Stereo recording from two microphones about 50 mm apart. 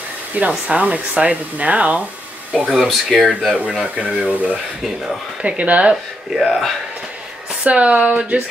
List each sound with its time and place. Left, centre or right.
0.5 s speech: right
2.8 s speech: centre
3.5 s speech: right
6.3 s speech: centre
7.6 s speech: right